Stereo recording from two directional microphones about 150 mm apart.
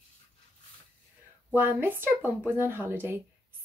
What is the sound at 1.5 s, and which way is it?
A woman's voice, 15° right (ahead or behind).